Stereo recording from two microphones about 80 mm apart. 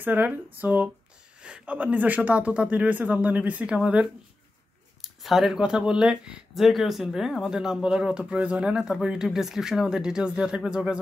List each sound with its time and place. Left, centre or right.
0.0 s speech: right
5.0 s speech: centre